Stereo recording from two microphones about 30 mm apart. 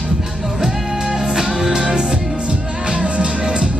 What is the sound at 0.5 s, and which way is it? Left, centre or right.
Music, centre.